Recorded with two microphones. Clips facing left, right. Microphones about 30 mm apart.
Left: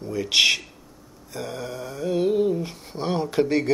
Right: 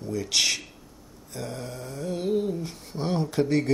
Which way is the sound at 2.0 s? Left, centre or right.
Left.